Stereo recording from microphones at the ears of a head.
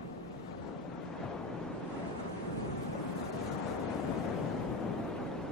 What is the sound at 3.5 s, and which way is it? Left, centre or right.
Vehicle, left.